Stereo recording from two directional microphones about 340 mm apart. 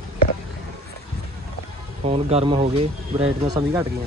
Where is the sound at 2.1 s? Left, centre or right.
Centre.